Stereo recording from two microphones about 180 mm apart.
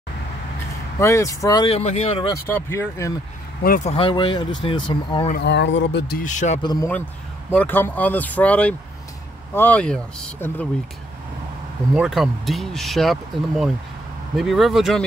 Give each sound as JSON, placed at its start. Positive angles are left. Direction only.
{"t": 0.9, "sound": "speech", "side_deg": 15}
{"t": 1.7, "sound": "speech", "side_deg": 35}
{"t": 2.4, "sound": "speech", "side_deg": 10}
{"t": 3.6, "sound": "a man's voice", "side_deg": 50}
{"t": 3.9, "sound": "speech", "side_deg": 30}
{"t": 5.4, "sound": "speech", "side_deg": 75}
{"t": 6.2, "sound": "a man's voice", "side_deg": 40}
{"t": 6.6, "sound": "speech", "side_deg": 25}
{"t": 7.5, "sound": "speech", "side_deg": 10}
{"t": 11.9, "sound": "speech", "side_deg": 0}